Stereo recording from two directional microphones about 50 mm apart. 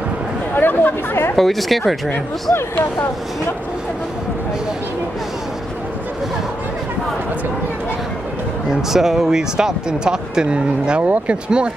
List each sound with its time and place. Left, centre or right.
0.6 s speech: left
1.3 s speech: centre
2.5 s speech: left
8.6 s speech: centre